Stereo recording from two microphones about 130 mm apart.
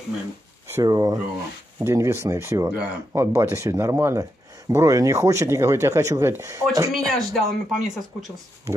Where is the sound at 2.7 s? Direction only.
10° right (ahead or behind).